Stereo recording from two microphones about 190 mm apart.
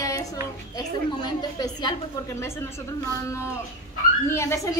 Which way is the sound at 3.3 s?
15° left (ahead or behind).